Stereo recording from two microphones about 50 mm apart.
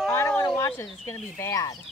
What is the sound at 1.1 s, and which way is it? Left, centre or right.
Speech, left.